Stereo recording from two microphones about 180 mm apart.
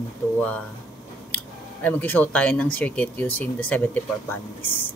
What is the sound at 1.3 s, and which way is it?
Speech, 10° left (ahead or behind).